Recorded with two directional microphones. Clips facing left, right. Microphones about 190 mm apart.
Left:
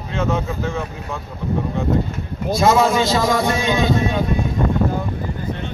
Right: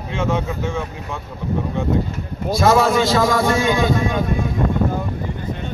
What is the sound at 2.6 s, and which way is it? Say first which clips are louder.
Speech: even; 20° left (ahead or behind).